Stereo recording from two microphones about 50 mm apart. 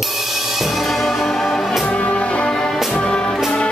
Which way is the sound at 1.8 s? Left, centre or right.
Left.